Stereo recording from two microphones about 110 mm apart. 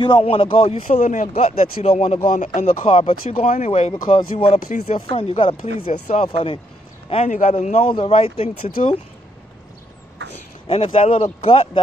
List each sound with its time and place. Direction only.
0.2 s speech: 60° left (ahead or behind); by 2.1 s 85° left
2.3 s speech: 75° left (ahead or behind)
3.9 s speech: 55° left (ahead or behind)
5.1 s a man's voice: 70° left (ahead or behind)
5.4 s speech: 60° left (ahead or behind)
7.1 s a man's voice: 65° left (ahead or behind); by 7.9 s 85° left
7.9 s speech: 55° left (ahead or behind)
10.7 s speech: 70° left (ahead or behind)